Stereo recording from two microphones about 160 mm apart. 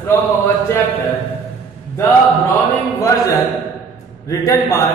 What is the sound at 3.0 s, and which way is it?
Speech, 20° left (ahead or behind).